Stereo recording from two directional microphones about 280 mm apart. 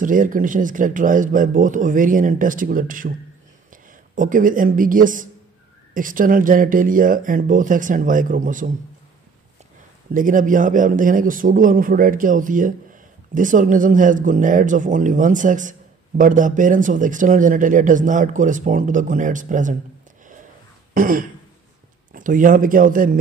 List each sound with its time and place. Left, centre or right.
0.0 s speech: right
10.1 s speech: right
20.9 s speech: right